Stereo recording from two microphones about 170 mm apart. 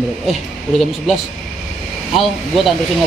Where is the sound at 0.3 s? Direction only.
Centre (ahead or behind).